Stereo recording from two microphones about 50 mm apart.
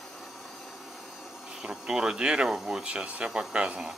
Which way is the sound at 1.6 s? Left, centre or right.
Centre.